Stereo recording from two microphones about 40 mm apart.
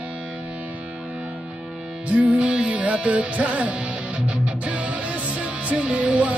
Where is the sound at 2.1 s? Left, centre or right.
Right.